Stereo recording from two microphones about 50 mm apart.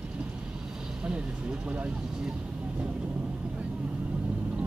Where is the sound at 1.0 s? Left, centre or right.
Right.